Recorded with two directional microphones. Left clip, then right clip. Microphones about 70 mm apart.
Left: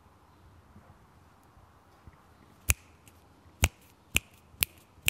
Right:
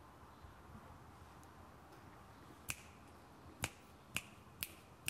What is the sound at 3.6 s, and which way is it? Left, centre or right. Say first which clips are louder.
Finger snapping: left 14 dB; left.